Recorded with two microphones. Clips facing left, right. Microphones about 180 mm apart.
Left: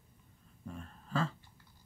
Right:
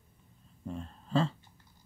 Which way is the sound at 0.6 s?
25° right (ahead or behind).